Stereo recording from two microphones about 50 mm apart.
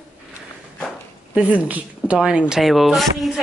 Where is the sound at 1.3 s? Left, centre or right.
Right.